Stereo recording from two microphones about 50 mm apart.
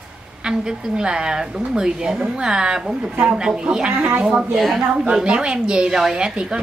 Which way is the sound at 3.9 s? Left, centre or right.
Right.